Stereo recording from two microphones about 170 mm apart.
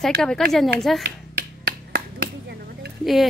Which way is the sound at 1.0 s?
65° right (ahead or behind).